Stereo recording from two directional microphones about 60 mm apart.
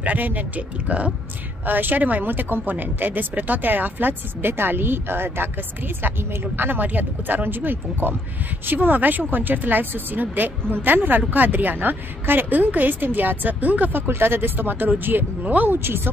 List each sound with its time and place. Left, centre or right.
0.0 s a woman's voice: right